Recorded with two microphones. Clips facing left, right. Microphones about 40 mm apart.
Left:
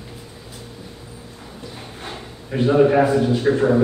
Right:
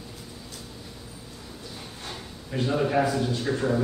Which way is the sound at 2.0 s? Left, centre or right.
Left.